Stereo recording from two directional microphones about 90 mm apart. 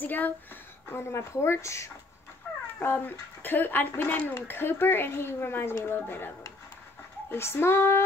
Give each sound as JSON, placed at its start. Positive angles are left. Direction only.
{"t": 0.0, "sound": "speech", "side_deg": 20}
{"t": 0.9, "sound": "speech", "side_deg": 30}
{"t": 2.8, "sound": "speech", "side_deg": 20}